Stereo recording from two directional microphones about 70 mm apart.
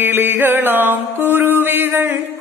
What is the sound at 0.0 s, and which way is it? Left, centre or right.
Music, right.